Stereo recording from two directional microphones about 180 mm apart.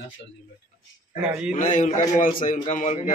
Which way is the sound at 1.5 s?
45° left (ahead or behind).